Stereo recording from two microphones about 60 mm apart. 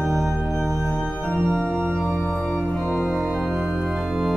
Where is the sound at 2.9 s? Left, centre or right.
Centre.